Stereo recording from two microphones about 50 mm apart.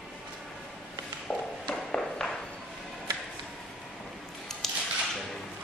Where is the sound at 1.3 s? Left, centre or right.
Centre.